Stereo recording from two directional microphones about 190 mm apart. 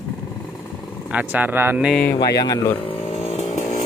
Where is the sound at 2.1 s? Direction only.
20° left (ahead or behind).